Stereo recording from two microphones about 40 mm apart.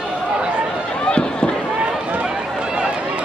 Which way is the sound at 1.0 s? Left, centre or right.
Left.